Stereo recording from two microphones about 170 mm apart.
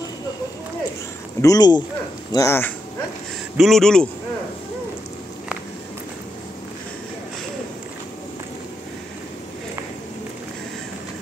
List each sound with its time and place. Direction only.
1.4 s speech: 20° left (ahead or behind)
3.5 s a man's voice: centre (ahead or behind)